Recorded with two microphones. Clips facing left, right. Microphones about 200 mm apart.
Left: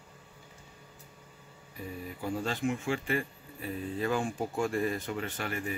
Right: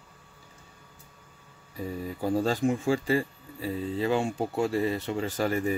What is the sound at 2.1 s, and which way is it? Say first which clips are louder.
Speech: right 7 dB; 35° right (ahead or behind).